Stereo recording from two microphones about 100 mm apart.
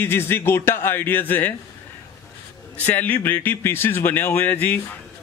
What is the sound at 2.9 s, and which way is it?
A man's voice, 15° left (ahead or behind).